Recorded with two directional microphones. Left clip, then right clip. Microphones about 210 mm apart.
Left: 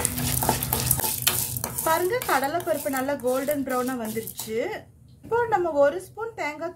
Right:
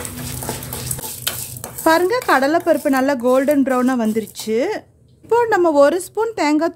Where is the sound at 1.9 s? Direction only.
50° right (ahead or behind).